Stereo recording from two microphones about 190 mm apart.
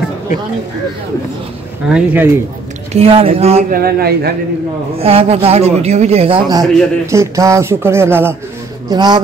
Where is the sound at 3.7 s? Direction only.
55° right (ahead or behind).